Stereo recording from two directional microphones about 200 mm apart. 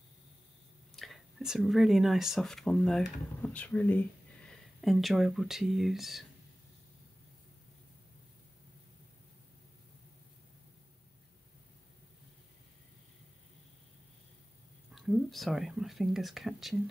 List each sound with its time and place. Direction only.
0.9 s speech: centre (ahead or behind)
15.0 s speech: centre (ahead or behind)